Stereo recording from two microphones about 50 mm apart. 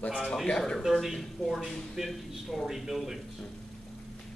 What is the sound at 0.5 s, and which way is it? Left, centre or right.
Speech, centre.